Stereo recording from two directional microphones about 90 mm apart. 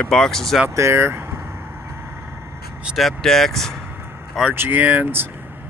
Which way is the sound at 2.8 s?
Centre (ahead or behind).